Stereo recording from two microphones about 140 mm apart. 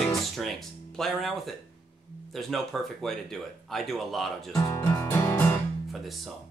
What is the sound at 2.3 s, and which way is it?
Speech, centre (ahead or behind).